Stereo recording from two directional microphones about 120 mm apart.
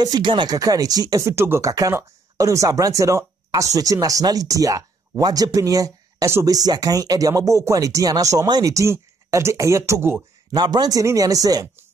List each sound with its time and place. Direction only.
0.0 s speech: 35° right (ahead or behind)
0.6 s speech: 30° right (ahead or behind)
10.5 s speech: 35° right (ahead or behind)